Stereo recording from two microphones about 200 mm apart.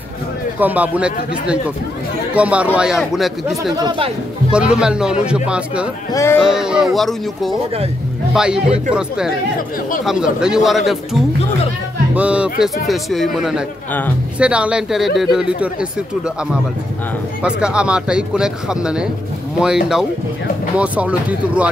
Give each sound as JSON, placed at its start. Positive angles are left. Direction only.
{"t": 0.6, "sound": "a man's voice", "side_deg": -10}
{"t": 3.7, "sound": "speech", "side_deg": -20}
{"t": 4.5, "sound": "speech", "side_deg": -5}
{"t": 6.1, "sound": "speech", "side_deg": 15}
{"t": 6.4, "sound": "speech", "side_deg": -5}
{"t": 10.0, "sound": "speech", "side_deg": -5}
{"t": 17.4, "sound": "a man's voice", "side_deg": -5}